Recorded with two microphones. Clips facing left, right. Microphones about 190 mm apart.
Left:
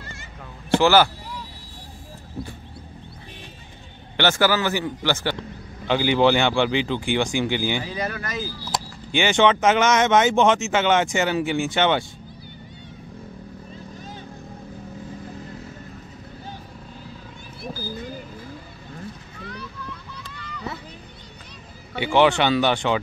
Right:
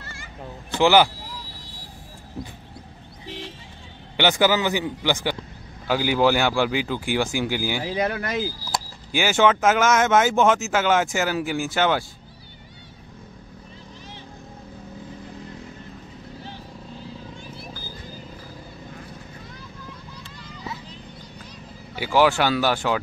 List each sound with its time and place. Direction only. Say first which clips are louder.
0.7 s a man's voice: even; 15° right (ahead or behind)
3.3 s vehicle: right 7 dB; 85° right
4.2 s a man's voice: right 1 dB; 15° right (ahead or behind)
8.1 s speech: right 4 dB; 25° right (ahead or behind)
8.7 s speech: left 3 dB; 5° right (ahead or behind)
19.4 s boat: left 6 dB; 70° left (ahead or behind)
20.2 s vehicle: left 3 dB; 65° left (ahead or behind)
22.0 s speech: left 1 dB; 5° right (ahead or behind)